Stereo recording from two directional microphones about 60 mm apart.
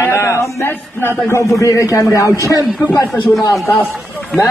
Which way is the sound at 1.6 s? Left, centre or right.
Left.